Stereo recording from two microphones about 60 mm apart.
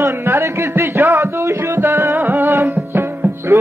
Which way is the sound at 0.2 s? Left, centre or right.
Right.